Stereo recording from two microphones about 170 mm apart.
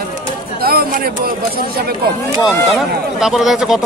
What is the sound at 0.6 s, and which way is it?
Speech, 65° right (ahead or behind).